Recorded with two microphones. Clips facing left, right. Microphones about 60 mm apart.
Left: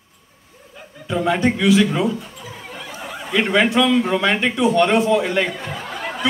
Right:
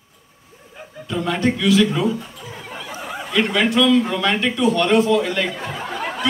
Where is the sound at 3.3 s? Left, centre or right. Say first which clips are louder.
Left 2 dB; centre.